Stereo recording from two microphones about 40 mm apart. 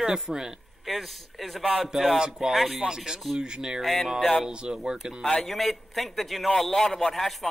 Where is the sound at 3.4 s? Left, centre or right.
Centre.